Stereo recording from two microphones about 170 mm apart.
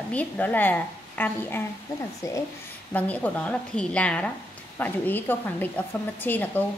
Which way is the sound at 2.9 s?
10° left (ahead or behind).